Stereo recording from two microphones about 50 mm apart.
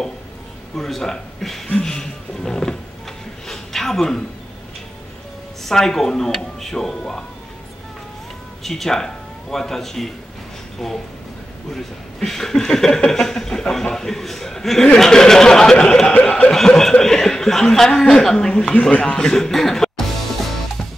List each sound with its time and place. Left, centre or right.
0.7 s a man's voice: centre
3.4 s a sound: centre
5.6 s speech: centre
8.6 s a man's voice: centre; by 16.5 s left
16.5 s speech: centre
18.7 s speech: left; by 19.9 s centre